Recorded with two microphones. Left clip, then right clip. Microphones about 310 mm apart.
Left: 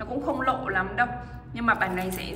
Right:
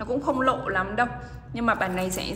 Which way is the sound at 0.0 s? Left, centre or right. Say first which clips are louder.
Right 3 dB; centre.